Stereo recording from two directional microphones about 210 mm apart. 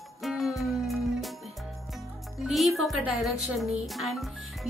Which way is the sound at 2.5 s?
Centre (ahead or behind).